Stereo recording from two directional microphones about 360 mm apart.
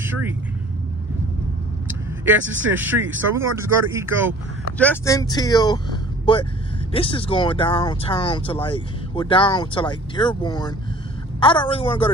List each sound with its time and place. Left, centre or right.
0.0 s speech: centre
2.4 s speech: right
2.7 s speech: centre
4.7 s speech: centre